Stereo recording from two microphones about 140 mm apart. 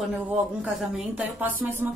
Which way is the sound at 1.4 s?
15° right (ahead or behind).